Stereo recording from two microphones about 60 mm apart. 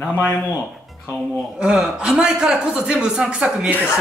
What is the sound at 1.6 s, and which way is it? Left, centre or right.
A man's voice, centre.